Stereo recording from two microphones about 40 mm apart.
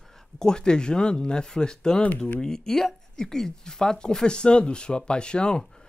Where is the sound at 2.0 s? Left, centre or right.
Left.